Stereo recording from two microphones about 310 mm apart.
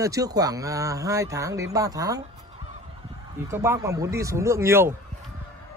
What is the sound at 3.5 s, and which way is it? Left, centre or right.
Speech, centre.